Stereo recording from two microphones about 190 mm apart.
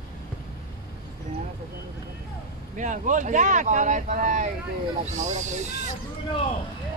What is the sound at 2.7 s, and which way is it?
Speech, 40° right (ahead or behind).